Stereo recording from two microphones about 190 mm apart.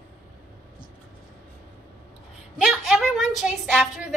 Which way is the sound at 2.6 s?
Centre (ahead or behind).